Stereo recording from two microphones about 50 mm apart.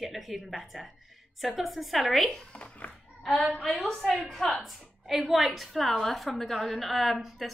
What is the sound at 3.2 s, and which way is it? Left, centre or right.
A woman's voice, centre.